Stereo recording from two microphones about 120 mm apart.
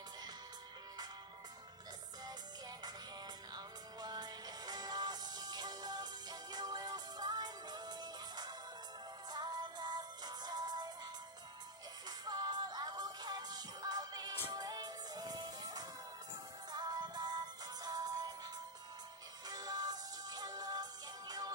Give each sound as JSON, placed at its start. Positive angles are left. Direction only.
{"t": 3.5, "sound": "music", "side_deg": -35}
{"t": 12.1, "sound": "music", "side_deg": -35}